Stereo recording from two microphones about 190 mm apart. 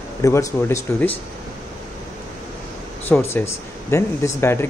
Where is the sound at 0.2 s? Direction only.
15° left (ahead or behind).